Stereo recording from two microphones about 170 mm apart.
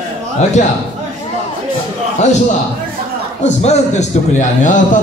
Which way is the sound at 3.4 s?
40° left (ahead or behind).